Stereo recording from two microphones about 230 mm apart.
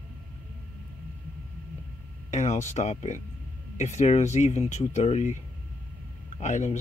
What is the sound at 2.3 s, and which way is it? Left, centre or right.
Speech, left.